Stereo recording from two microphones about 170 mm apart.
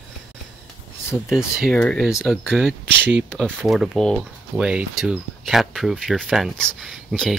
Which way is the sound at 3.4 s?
Centre (ahead or behind).